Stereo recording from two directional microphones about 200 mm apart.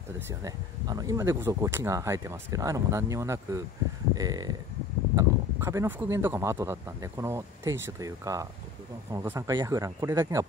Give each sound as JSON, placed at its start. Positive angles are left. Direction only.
{"t": 0.3, "sound": "speech", "side_deg": -15}
{"t": 4.1, "sound": "a sound", "side_deg": -20}
{"t": 5.1, "sound": "speech", "side_deg": -15}